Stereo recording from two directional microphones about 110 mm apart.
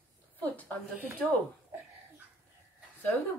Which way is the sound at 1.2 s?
10° left (ahead or behind).